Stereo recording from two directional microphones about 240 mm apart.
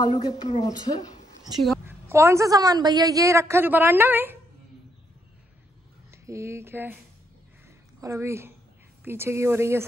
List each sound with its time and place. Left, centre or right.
0.0 s a woman's voice: centre
1.6 s a woman's voice: centre
2.0 s a woman's voice: centre
6.1 s speech: centre
7.6 s a sound: centre
9.0 s a woman's voice: centre